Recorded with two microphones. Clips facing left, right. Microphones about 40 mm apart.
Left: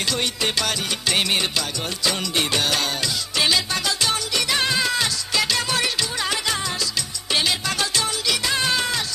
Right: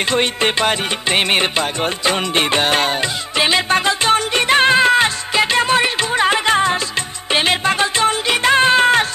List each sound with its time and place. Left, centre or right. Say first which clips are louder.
0.1 s music: right 7 dB; right